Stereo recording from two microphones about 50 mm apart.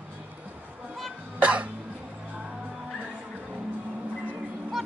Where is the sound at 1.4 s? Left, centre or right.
Right.